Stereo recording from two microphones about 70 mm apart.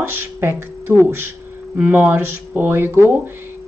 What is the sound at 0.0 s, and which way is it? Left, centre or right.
Speech, right.